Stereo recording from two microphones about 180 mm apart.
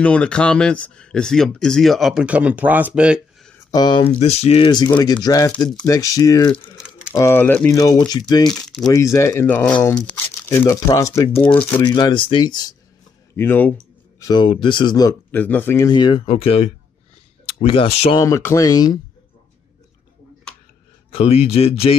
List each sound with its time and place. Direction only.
0.0 s speech: 5° left (ahead or behind)
3.7 s speech: 25° left (ahead or behind)
4.2 s speech: 35° left (ahead or behind); by 7.7 s 10° left (ahead or behind)
7.7 s speech: 20° left (ahead or behind)
8.5 s speech: 5° left (ahead or behind)
8.8 s speech: 15° left (ahead or behind)
11.8 s speech: 25° left (ahead or behind)
13.4 s speech: 10° left (ahead or behind)
14.2 s speech: 25° left (ahead or behind)
18.2 s speech: 15° left (ahead or behind)
21.1 s speech: 35° left (ahead or behind)